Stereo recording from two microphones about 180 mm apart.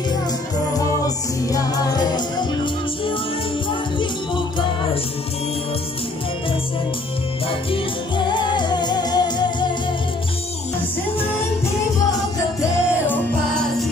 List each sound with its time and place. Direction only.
0.7 s music: 20° left (ahead or behind)
7.7 s music: 25° left (ahead or behind)
13.0 s music: 5° left (ahead or behind)